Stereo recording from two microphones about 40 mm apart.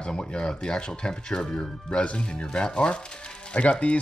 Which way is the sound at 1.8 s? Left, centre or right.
Left.